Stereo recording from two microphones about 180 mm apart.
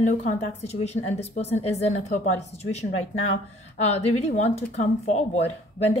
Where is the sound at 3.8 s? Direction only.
35° left (ahead or behind).